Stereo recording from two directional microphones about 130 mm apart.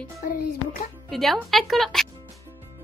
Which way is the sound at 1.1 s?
Centre (ahead or behind).